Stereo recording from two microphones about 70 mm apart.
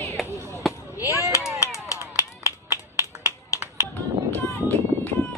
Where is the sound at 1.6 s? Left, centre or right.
Left.